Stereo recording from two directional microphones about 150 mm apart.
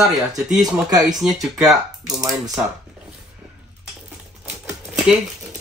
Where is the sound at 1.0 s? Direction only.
Centre (ahead or behind).